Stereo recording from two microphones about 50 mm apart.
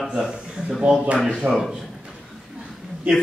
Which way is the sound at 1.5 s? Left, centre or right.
Centre.